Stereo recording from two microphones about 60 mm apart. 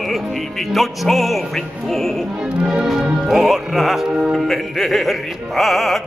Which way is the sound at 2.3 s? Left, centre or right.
Centre.